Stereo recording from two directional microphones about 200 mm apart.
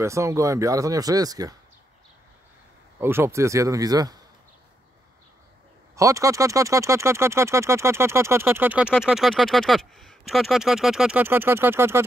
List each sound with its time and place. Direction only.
0.0 s speech: 15° right (ahead or behind)
3.0 s speech: 10° right (ahead or behind)
5.9 s speech: 15° right (ahead or behind)